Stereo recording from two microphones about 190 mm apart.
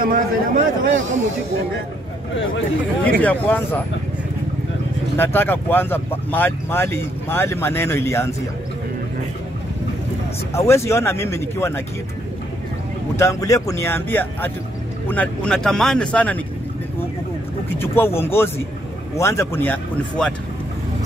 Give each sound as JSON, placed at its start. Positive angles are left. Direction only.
{"t": 0.0, "sound": "a man's voice", "side_deg": -45}
{"t": 2.3, "sound": "speech", "side_deg": 80}
{"t": 3.1, "sound": "speech", "side_deg": 10}
{"t": 5.1, "sound": "speech", "side_deg": 10}
{"t": 10.5, "sound": "speech", "side_deg": 15}
{"t": 13.2, "sound": "speech", "side_deg": 15}
{"t": 17.7, "sound": "speech", "side_deg": 10}